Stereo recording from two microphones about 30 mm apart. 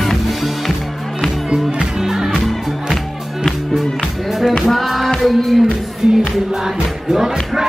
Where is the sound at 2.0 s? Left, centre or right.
Centre.